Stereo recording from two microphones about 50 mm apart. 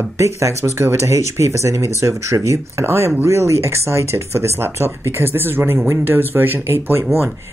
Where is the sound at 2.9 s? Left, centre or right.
Right.